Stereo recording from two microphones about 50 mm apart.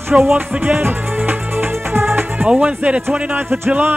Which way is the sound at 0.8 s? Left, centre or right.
Right.